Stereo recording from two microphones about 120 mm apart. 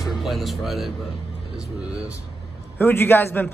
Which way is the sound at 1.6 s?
10° right (ahead or behind).